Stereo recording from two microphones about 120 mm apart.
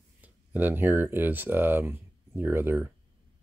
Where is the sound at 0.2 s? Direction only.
15° right (ahead or behind).